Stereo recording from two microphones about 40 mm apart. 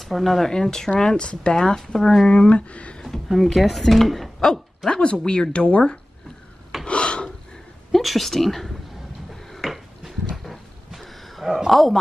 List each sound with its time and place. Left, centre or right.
0.0 s speech: centre
0.5 s speech: centre
1.1 s speech: left
2.0 s speech: centre
2.2 s speech: left
3.4 s speech: centre
4.4 s speech: centre
5.0 s speech: left
6.9 s filing: left
7.9 s a woman's voice: centre
9.3 s a sound: centre
11.4 s speech: centre
11.7 s speech: centre